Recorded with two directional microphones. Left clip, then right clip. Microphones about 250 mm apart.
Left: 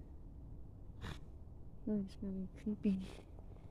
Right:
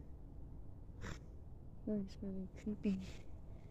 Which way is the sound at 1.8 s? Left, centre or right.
Left.